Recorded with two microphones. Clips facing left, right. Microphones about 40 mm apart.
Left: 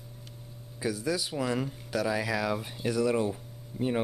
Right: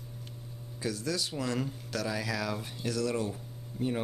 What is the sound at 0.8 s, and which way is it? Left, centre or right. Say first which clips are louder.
Speech: left 3 dB; centre.